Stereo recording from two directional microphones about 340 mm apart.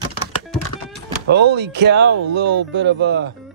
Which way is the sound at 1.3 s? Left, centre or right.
Right.